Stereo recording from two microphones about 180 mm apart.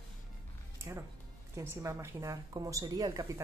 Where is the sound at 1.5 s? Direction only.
15° right (ahead or behind).